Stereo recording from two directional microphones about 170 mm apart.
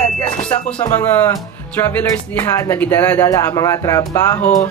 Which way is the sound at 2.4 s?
10° left (ahead or behind).